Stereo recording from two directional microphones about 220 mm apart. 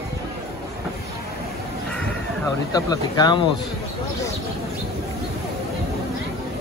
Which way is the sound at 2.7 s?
15° left (ahead or behind).